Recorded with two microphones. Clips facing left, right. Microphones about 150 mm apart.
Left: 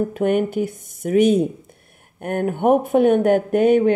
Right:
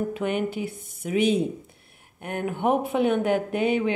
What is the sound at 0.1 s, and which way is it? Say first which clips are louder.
A woman's voice: left 7 dB; 50° left (ahead or behind).